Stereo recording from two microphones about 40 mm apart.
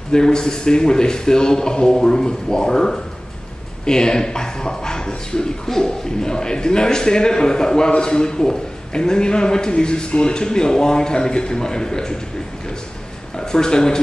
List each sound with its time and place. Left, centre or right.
0.1 s speech: centre
13.4 s speech: centre